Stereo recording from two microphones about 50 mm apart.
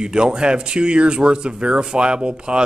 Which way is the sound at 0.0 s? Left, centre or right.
Centre.